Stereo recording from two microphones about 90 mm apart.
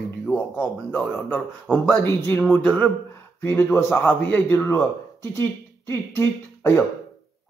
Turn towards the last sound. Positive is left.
turn(degrees=30)  # may be behind; listen again after turning